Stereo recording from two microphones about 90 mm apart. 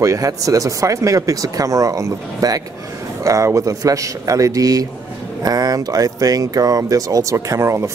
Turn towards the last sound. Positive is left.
turn(degrees=-30)  # may be behind; listen again after turning